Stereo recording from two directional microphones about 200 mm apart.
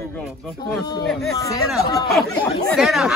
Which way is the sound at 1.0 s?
Centre (ahead or behind).